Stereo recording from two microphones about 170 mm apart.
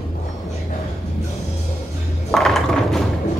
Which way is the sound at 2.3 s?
Centre (ahead or behind).